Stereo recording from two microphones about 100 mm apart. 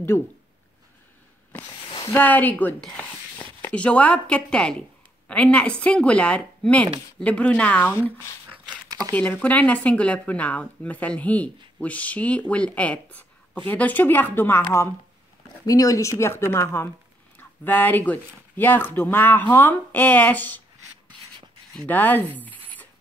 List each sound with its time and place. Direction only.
2.1 s speech: 20° left (ahead or behind)
8.6 s a sound: 40° right (ahead or behind)
9.1 s speech: 15° left (ahead or behind)
15.6 s speech: 35° left (ahead or behind); by 20.6 s 15° left (ahead or behind)
21.8 s speech: 20° left (ahead or behind)